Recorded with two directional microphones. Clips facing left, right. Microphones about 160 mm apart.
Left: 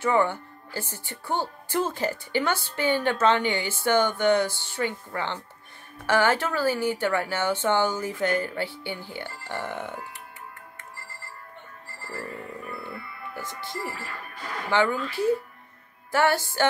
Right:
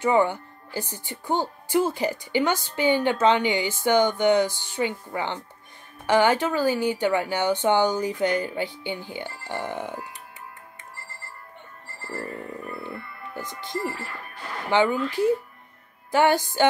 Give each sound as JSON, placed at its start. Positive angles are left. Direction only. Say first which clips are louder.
{"t": 0.0, "sound": "speech", "louder": "right 2 dB", "side_deg": -15}
{"t": 13.3, "sound": "speech", "louder": "right 4 dB", "side_deg": -15}